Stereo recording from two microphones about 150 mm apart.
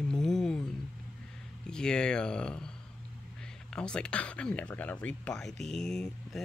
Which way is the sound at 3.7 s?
5° left (ahead or behind).